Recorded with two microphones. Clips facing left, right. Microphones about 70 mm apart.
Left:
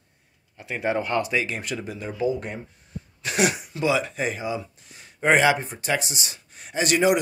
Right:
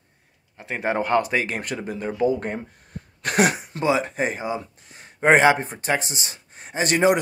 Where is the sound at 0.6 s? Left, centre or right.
Right.